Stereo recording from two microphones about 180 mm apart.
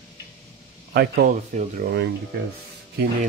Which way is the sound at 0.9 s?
60° right (ahead or behind).